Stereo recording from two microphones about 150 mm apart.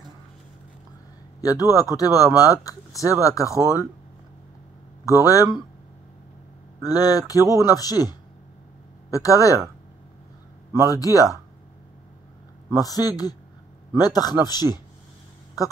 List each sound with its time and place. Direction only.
1.4 s speech: 25° left (ahead or behind)
5.0 s speech: 20° left (ahead or behind)
6.8 s speech: 25° left (ahead or behind)
10.9 s speech: 25° left (ahead or behind)
12.7 s speech: 25° left (ahead or behind)